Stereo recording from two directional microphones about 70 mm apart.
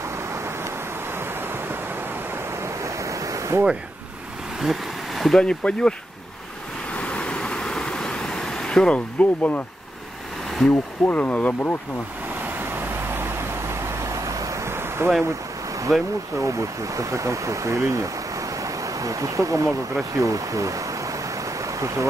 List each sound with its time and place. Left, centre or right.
2.8 s ocean: right
4.6 s a sound: centre
5.4 s speech: centre
7.0 s a sound: centre
10.7 s speech: left
12.5 s vehicle: right
14.0 s vehicle: right
14.7 s waves: right
16.3 s speech: right
18.6 s a sound: right
20.2 s speech: right
21.7 s speech: right